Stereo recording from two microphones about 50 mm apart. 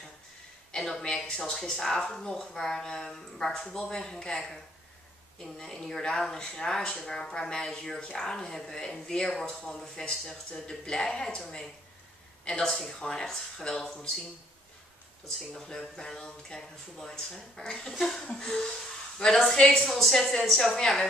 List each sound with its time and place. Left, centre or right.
0.7 s speech: centre
15.2 s a woman's voice: centre
18.2 s a woman's voice: centre